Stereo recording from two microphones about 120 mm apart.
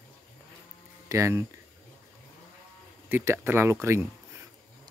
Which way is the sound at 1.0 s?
25° right (ahead or behind).